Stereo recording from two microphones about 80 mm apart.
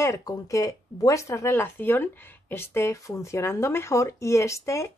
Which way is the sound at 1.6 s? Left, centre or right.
Left.